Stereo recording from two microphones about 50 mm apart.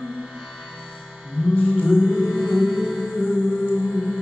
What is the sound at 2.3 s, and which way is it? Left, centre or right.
Music, centre.